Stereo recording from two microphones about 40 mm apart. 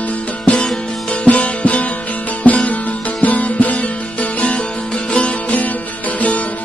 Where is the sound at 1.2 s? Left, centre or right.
Left.